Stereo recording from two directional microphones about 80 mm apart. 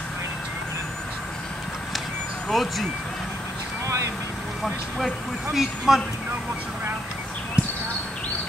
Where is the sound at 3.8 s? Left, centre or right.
Right.